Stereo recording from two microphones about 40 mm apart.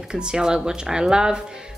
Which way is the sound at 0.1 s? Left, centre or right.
Right.